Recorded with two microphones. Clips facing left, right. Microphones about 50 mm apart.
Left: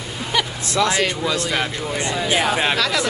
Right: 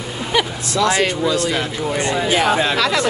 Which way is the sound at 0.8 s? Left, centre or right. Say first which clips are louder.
Right 4 dB; right.